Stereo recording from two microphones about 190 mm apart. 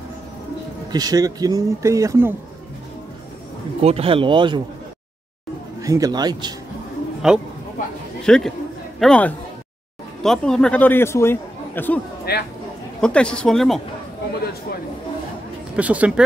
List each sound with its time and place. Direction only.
0.9 s speech: 20° right (ahead or behind)
3.8 s speech: 30° right (ahead or behind)
5.8 s speech: 15° right (ahead or behind)
7.2 s a man's voice: 5° right (ahead or behind)
12.3 s speech: 55° left (ahead or behind)
13.0 s speech: 5° left (ahead or behind)
15.7 s speech: 5° right (ahead or behind)